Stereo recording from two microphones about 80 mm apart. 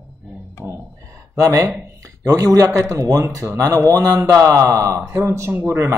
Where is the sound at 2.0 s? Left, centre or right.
Right.